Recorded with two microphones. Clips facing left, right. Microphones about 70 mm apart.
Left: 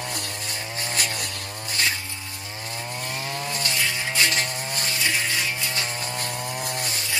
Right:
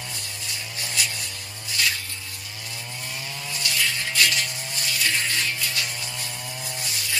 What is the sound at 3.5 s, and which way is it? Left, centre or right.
Chainsaw, left.